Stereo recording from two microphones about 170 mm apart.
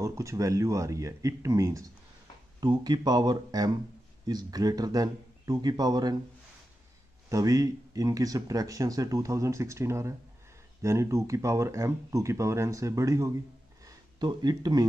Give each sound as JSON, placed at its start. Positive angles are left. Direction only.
{"t": 0.0, "sound": "speech", "side_deg": -15}
{"t": 7.2, "sound": "speech", "side_deg": -20}